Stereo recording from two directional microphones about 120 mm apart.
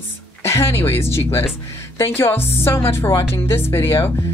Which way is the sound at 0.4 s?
20° left (ahead or behind).